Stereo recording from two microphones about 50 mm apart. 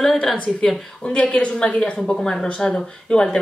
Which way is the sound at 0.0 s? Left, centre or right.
Centre.